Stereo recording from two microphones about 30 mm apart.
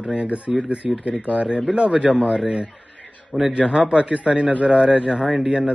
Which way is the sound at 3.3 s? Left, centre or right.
Left.